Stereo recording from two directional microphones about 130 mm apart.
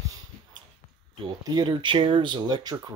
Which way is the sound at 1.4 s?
30° right (ahead or behind).